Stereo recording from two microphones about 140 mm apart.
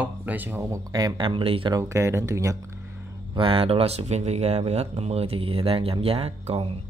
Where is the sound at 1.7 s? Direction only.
20° right (ahead or behind).